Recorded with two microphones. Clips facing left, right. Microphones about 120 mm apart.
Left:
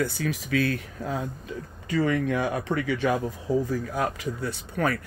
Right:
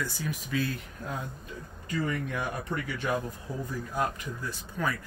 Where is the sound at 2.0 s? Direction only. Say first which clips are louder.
Left 7 dB; 90° left.